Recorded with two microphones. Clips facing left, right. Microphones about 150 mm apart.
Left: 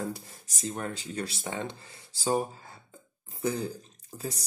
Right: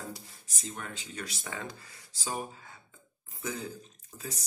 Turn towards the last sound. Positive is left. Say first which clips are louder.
# left 7 dB
turn(degrees=35)  # may be behind; listen again after turning